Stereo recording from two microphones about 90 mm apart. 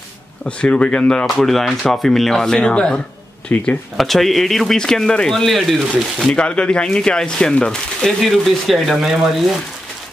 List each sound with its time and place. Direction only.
0.5 s speech: 10° left (ahead or behind)
3.5 s speech: 20° left (ahead or behind)
3.9 s speech: centre (ahead or behind)